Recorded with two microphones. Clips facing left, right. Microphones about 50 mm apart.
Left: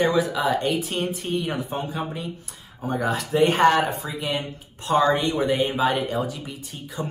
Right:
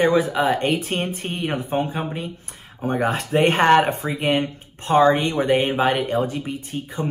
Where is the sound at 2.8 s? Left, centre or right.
Right.